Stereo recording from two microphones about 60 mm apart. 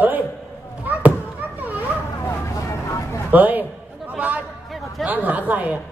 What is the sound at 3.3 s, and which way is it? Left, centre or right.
Speech, right.